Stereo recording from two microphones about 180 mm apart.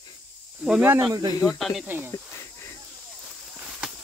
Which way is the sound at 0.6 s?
10° right (ahead or behind).